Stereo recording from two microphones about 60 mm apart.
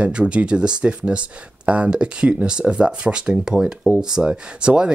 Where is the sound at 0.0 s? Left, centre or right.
Centre.